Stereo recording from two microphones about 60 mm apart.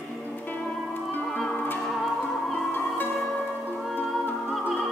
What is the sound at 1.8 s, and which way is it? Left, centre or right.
Music, centre.